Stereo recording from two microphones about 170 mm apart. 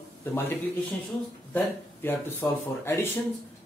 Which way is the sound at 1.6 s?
15° left (ahead or behind).